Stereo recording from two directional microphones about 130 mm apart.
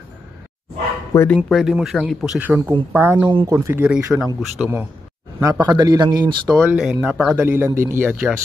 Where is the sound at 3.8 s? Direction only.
5° right (ahead or behind).